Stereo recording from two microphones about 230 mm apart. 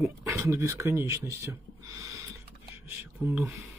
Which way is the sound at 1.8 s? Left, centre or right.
Centre.